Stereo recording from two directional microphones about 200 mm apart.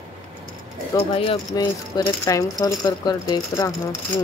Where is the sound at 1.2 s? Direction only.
25° left (ahead or behind).